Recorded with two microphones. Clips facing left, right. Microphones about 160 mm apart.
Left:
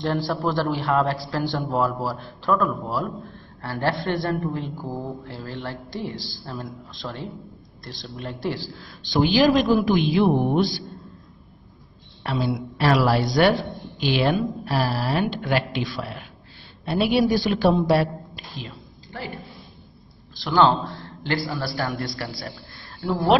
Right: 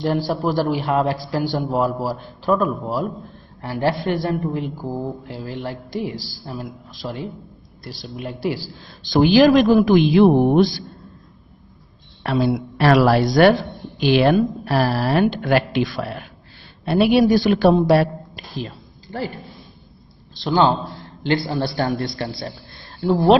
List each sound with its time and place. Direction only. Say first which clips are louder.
0.0 s a woman's voice: right 3 dB; 15° right (ahead or behind)
9.1 s speech: right 5 dB; 55° right (ahead or behind); by 10.6 s 75° right (ahead or behind)
12.2 s speech: right 6 dB; 60° right (ahead or behind)
14.1 s speech: right 6 dB; 65° right (ahead or behind)
16.8 s speech: right 5 dB; 65° right (ahead or behind)
18.3 s a sound: right 7 dB; 40° right (ahead or behind)
20.3 s a man's voice: right 1 dB; 20° right (ahead or behind)